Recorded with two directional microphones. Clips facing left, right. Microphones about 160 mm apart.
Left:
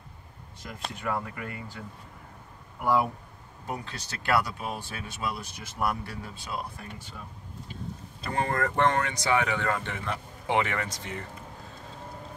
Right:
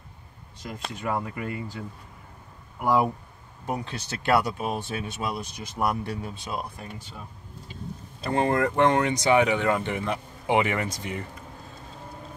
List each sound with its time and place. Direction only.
1.0 s speech: 15° right (ahead or behind)
2.8 s speech: 15° right (ahead or behind)
8.3 s speech: 20° right (ahead or behind)